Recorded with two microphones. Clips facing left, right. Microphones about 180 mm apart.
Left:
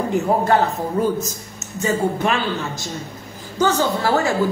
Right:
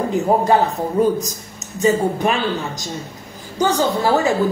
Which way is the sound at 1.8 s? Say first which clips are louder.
Right 3 dB; 15° right (ahead or behind).